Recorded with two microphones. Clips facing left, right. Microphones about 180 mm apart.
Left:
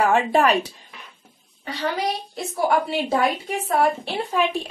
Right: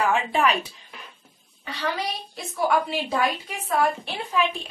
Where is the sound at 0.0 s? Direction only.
45° left (ahead or behind).